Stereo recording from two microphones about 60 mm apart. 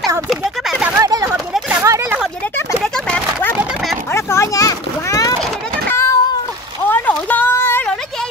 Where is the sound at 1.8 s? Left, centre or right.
Right.